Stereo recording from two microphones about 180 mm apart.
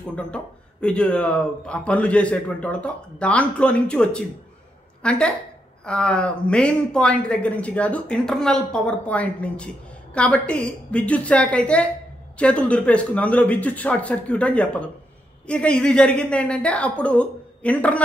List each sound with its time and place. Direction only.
0.0 s a man's voice: 5° left (ahead or behind)